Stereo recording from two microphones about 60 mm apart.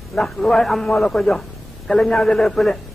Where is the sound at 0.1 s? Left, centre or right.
Centre.